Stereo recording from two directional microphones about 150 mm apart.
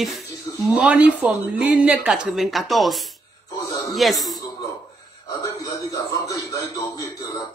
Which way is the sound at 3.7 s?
25° left (ahead or behind).